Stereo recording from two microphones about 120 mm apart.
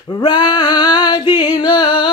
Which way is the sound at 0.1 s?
35° left (ahead or behind).